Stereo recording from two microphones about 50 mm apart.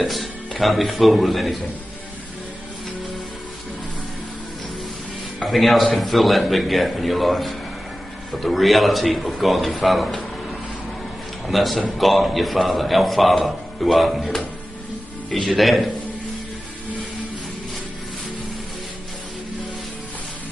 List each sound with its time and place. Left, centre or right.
0.0 s a man's voice: centre
5.4 s a man's voice: centre
11.4 s a man's voice: centre
15.3 s a man's voice: centre